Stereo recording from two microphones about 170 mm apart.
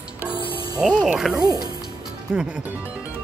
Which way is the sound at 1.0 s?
5° right (ahead or behind).